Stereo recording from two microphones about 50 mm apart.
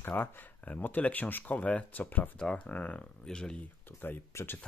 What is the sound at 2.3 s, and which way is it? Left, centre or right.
Speech, centre.